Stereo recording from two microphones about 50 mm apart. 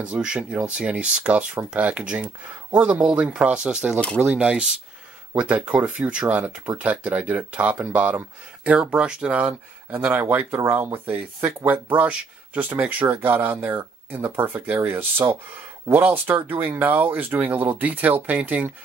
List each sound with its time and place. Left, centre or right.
0.0 s speech: right
8.9 s speech: centre
9.9 s speech: right